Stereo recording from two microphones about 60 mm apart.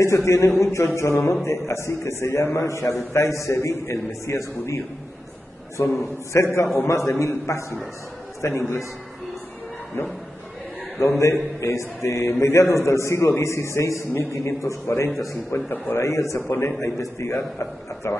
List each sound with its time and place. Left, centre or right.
0.0 s a man's voice: left
5.8 s a man's voice: left
6.9 s a man's voice: left
10.0 s a man's voice: left
15.5 s a man's voice: left
16.0 s a man's voice: left
16.4 s a man's voice: left
17.0 s a man's voice: left